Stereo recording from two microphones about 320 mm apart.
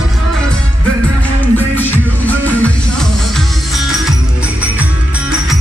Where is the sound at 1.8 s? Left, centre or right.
Centre.